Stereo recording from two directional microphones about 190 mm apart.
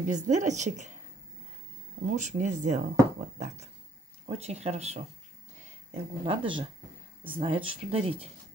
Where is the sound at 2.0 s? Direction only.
40° right (ahead or behind).